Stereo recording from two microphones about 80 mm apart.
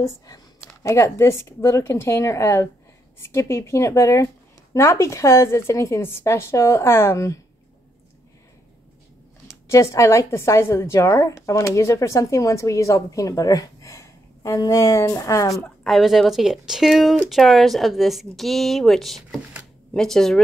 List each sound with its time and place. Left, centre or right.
0.8 s a woman's voice: left
9.7 s a woman's voice: left
15.8 s speech: centre